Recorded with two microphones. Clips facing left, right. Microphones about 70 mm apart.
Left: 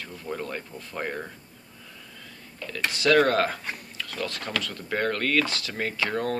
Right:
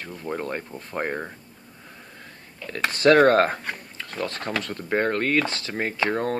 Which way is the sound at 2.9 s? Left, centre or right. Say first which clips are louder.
Right 5 dB; right.